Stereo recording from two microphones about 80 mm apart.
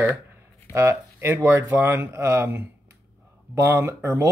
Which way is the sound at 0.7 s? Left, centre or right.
Right.